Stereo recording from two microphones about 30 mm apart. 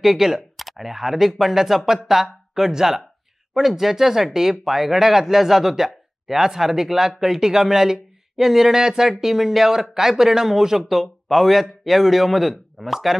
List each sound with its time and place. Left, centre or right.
0.0 s speech: centre
0.6 s a sound: centre
0.8 s speech: centre
10.9 s a man's voice: centre